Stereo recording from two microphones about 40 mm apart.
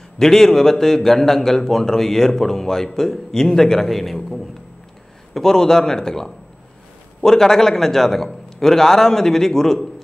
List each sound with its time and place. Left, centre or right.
0.2 s speech: centre
5.3 s speech: centre